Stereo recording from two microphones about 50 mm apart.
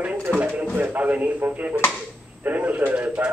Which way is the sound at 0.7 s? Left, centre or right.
Right.